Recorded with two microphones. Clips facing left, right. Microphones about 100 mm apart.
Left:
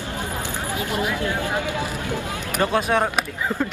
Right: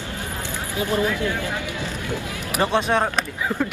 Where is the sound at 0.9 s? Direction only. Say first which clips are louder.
Right 2 dB; 15° left (ahead or behind).